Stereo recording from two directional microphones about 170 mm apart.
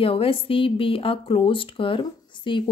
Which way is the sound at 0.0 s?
35° left (ahead or behind).